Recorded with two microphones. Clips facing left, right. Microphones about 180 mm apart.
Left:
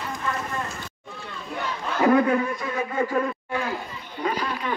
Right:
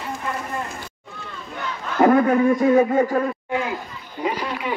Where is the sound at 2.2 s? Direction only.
40° right (ahead or behind).